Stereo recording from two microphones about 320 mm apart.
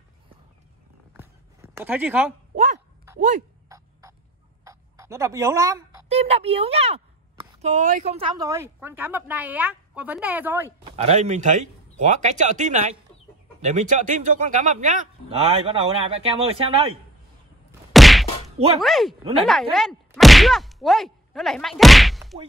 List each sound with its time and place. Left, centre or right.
1.1 s a sound: centre
2.5 s speech: right
3.6 s beatboxing: centre
4.6 s speech: centre
11.0 s speech: right
17.9 s whack: centre
18.8 s speech: centre
19.4 s a sound: centre